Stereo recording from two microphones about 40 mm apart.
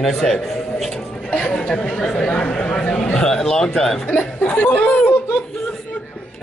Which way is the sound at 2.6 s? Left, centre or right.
Left.